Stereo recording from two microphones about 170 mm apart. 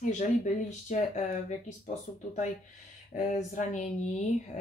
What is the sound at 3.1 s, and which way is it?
Speech, 45° left (ahead or behind).